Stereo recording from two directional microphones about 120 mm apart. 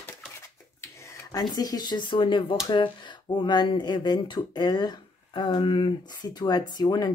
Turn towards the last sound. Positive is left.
turn(degrees=35)  # may be behind; listen again after turning